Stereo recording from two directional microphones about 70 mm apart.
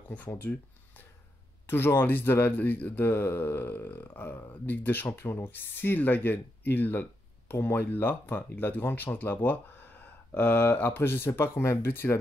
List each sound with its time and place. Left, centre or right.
0.5 s speech: left
1.7 s a man's voice: left